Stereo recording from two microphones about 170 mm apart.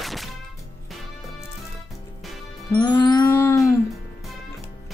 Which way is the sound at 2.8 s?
20° left (ahead or behind).